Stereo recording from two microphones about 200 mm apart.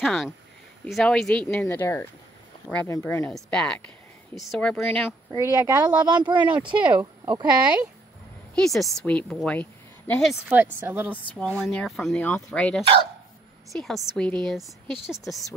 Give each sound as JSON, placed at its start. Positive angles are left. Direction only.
{"t": 0.0, "sound": "speech", "side_deg": 0}
{"t": 5.3, "sound": "speech", "side_deg": -20}
{"t": 7.0, "sound": "speech", "side_deg": -10}
{"t": 8.5, "sound": "a woman's voice", "side_deg": 0}
{"t": 10.5, "sound": "speech", "side_deg": -10}